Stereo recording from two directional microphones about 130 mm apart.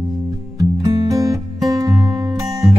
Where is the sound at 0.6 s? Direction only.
25° right (ahead or behind).